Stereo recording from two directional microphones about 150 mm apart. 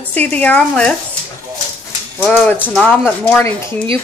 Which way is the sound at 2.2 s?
5° left (ahead or behind).